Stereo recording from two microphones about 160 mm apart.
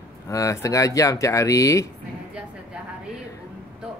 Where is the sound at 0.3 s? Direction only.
20° left (ahead or behind).